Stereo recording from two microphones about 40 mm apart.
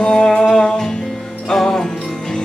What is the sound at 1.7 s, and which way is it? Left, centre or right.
Jingle bell, centre.